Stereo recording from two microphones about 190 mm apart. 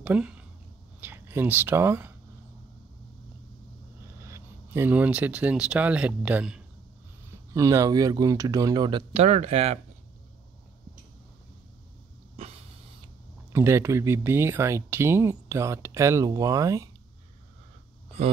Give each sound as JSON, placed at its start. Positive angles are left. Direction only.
{"t": 0.0, "sound": "a sound", "side_deg": -5}
{"t": 1.0, "sound": "speech", "side_deg": -10}
{"t": 4.3, "sound": "speech", "side_deg": -10}
{"t": 7.5, "sound": "speech", "side_deg": -15}
{"t": 13.5, "sound": "speech", "side_deg": -15}